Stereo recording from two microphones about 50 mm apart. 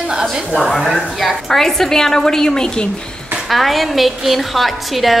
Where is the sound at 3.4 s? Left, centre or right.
Centre.